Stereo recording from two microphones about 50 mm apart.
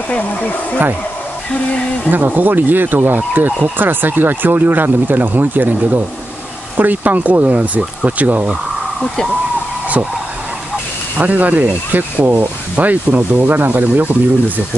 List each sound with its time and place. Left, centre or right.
0.1 s speech: left
2.0 s speech: right
5.8 s speech: right
9.0 s speech: centre
11.1 s speech: right